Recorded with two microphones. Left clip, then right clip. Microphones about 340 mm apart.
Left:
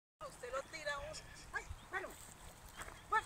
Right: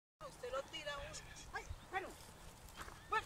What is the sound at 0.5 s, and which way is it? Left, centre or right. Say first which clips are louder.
Dog: left 2 dB; centre.